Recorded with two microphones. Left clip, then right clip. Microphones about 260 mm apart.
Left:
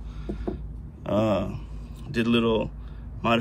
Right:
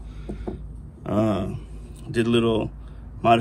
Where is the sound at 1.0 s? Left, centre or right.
Centre.